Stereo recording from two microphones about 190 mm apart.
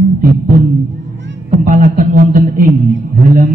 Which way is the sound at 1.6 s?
45° right (ahead or behind).